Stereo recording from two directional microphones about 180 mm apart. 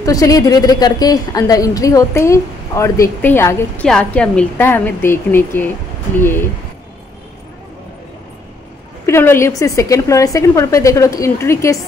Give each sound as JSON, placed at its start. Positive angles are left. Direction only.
{"t": 0.0, "sound": "a woman's voice", "side_deg": 20}
{"t": 9.0, "sound": "a woman's voice", "side_deg": 15}